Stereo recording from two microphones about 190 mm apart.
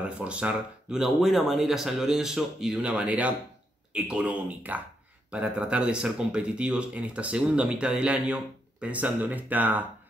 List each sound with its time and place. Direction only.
0.2 s speech: 5° right (ahead or behind)